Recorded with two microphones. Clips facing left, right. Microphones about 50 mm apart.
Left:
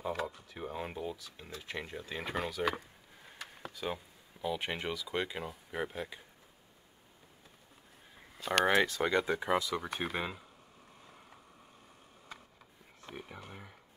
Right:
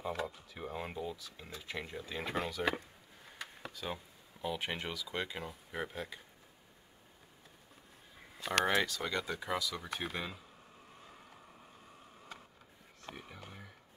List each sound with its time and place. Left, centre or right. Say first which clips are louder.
0.0 s speech: left 2 dB; centre
3.7 s speech: left 5 dB; centre
8.5 s speech: left 3 dB; centre
8.8 s speech: left 6 dB; left
13.1 s speech: left 4 dB; centre